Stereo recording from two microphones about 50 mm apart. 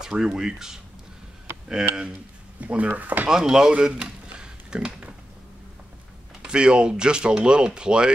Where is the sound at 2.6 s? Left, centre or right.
Right.